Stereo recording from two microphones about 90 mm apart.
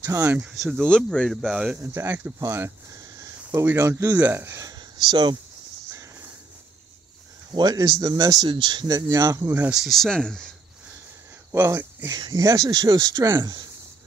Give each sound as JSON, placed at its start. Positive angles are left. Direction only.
{"t": 0.0, "sound": "speech", "side_deg": -30}
{"t": 0.5, "sound": "speech", "side_deg": -5}
{"t": 0.8, "sound": "speech", "side_deg": 10}
{"t": 1.8, "sound": "speech", "side_deg": -30}
{"t": 4.7, "sound": "speech", "side_deg": -55}
{"t": 7.5, "sound": "speech", "side_deg": -45}
{"t": 8.9, "sound": "speech", "side_deg": -45}
{"t": 9.5, "sound": "speech", "side_deg": -20}
{"t": 9.8, "sound": "speech", "side_deg": 0}
{"t": 11.6, "sound": "speech", "side_deg": -30}
{"t": 12.1, "sound": "speech", "side_deg": -45}